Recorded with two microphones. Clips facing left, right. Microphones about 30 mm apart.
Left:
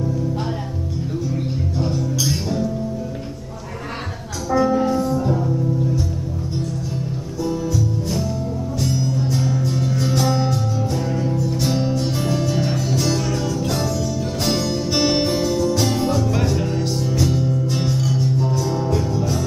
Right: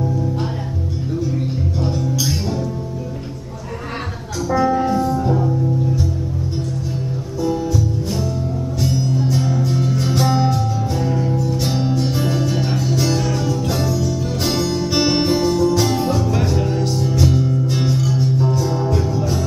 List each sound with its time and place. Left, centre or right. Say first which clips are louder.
1.8 s music: even; centre
4.5 s music: right 1 dB; centre
7.4 s music: right 3 dB; centre
8.8 s music: right 3 dB; centre